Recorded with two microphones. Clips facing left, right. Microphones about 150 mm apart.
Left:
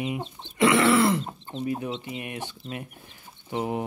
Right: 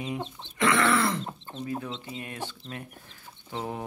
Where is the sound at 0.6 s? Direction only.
20° left (ahead or behind).